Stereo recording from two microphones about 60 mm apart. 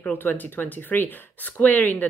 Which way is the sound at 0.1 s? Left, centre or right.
Left.